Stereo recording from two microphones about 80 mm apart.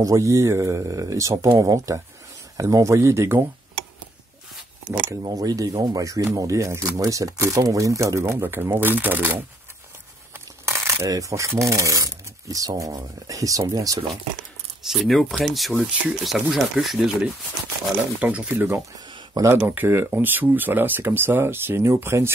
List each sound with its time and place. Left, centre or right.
0.0 s speech: right
5.2 s speech: right
10.6 s coin: right
11.1 s speech: right
14.9 s speech: centre
18.2 s speech: centre
18.5 s speech: right